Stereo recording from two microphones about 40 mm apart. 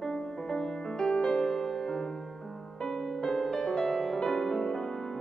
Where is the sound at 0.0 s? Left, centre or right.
Centre.